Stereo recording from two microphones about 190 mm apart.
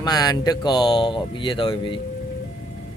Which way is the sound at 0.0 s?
20° left (ahead or behind).